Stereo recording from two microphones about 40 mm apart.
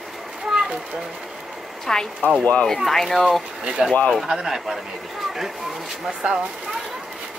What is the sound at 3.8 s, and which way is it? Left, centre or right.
Speech, right.